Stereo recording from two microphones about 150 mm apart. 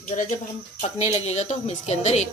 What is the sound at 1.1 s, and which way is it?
A woman's voice, 45° left (ahead or behind).